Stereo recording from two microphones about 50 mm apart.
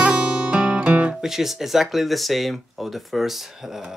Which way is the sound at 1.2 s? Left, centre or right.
Centre.